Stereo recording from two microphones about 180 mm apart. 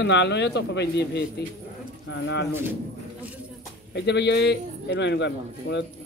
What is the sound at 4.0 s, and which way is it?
Speech, 70° left (ahead or behind).